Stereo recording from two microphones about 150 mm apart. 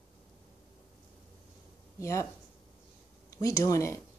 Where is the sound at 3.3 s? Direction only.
20° left (ahead or behind).